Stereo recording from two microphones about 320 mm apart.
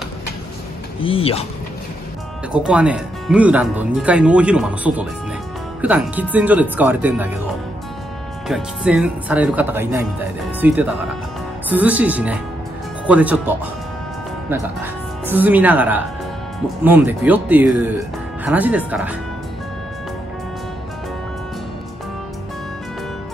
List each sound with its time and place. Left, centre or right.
1.0 s speech: centre
2.5 s speech: centre
8.5 s speech: centre